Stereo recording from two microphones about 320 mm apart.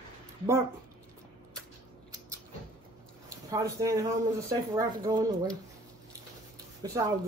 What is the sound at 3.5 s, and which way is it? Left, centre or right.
Speech, centre.